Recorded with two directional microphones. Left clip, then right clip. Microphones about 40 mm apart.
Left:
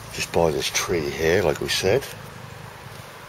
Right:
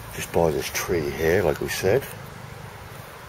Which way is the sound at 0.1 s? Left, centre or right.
Left.